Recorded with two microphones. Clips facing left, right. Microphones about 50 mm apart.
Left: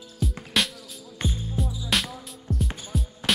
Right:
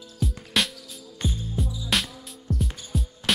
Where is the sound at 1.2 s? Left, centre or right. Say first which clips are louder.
Even; left.